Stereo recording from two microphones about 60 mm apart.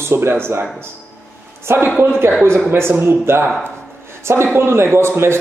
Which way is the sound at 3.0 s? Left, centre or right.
Right.